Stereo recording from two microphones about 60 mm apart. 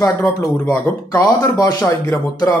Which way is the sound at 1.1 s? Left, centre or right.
Left.